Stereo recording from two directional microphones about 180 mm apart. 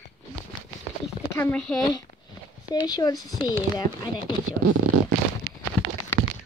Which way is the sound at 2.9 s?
20° left (ahead or behind).